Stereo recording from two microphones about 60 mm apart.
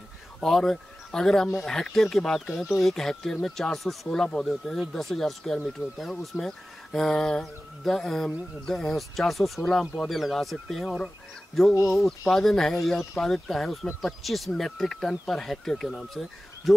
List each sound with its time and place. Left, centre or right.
0.4 s speech: centre